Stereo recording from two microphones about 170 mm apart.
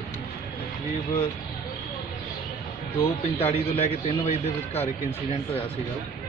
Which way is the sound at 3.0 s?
40° left (ahead or behind).